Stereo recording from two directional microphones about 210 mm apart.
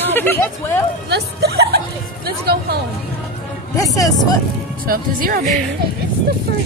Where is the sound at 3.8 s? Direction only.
15° left (ahead or behind).